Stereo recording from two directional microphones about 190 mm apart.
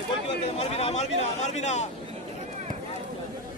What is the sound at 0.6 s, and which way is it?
Speech, 35° left (ahead or behind).